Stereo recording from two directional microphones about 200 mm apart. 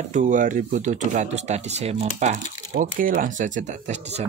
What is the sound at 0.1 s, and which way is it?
Speech, 40° right (ahead or behind).